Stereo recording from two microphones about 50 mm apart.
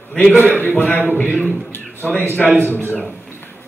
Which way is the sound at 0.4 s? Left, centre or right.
Left.